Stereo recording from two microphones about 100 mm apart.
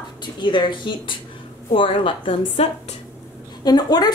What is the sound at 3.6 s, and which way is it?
Speech, 45° left (ahead or behind).